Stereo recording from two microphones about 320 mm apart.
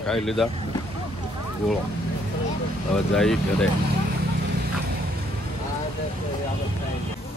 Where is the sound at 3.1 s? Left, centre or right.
Centre.